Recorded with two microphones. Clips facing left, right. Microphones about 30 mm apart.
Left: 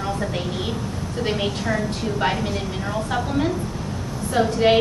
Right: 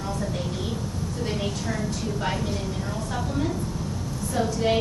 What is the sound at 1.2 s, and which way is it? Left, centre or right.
A woman's voice, left.